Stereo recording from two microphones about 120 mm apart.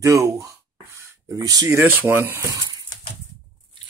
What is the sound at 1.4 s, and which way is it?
Speech, 30° right (ahead or behind).